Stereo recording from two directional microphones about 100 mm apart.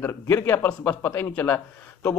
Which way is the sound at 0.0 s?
25° left (ahead or behind).